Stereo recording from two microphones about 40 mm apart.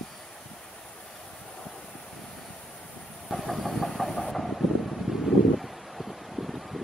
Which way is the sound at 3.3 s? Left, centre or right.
Centre.